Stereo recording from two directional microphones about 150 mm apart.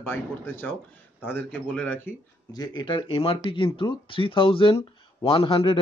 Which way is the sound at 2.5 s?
25° left (ahead or behind).